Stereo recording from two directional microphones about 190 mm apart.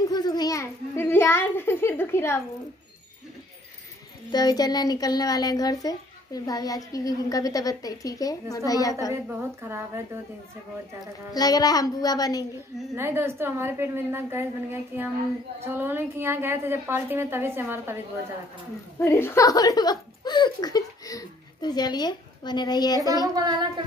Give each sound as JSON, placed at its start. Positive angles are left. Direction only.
{"t": 0.1, "sound": "a sound", "side_deg": 20}
{"t": 4.3, "sound": "speech", "side_deg": 20}
{"t": 9.1, "sound": "a woman's voice", "side_deg": -15}
{"t": 11.3, "sound": "speech", "side_deg": 20}
{"t": 12.9, "sound": "a woman's voice", "side_deg": -15}
{"t": 18.9, "sound": "speech", "side_deg": 10}
{"t": 23.2, "sound": "speech", "side_deg": -20}